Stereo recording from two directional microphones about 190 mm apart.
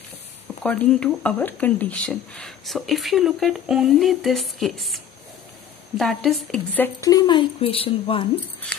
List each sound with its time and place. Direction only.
0.7 s a woman's voice: 5° left (ahead or behind); by 8.3 s 30° left (ahead or behind)